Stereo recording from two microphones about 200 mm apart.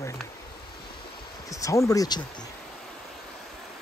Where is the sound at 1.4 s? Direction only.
15° left (ahead or behind).